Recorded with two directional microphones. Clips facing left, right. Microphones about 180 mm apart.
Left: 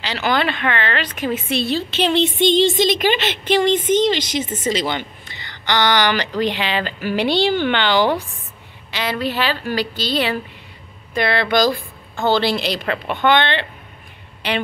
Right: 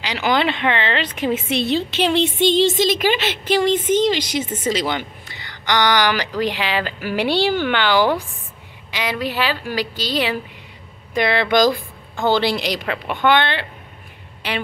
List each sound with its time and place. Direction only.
0.0 s a woman's voice: 15° right (ahead or behind)